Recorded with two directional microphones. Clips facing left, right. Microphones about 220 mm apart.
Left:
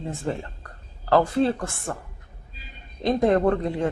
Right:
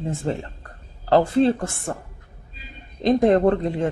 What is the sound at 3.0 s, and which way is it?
Speech, 20° right (ahead or behind).